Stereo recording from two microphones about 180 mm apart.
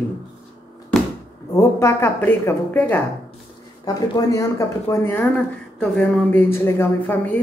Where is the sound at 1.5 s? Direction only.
15° left (ahead or behind).